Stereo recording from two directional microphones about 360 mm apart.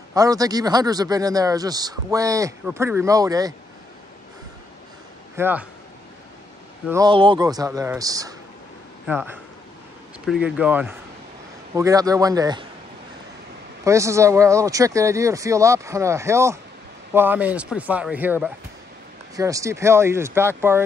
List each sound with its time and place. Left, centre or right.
0.1 s speech: centre
5.3 s speech: centre
6.9 s speech: centre
13.8 s speech: centre